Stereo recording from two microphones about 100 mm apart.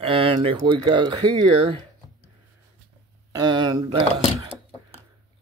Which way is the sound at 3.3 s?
45° right (ahead or behind).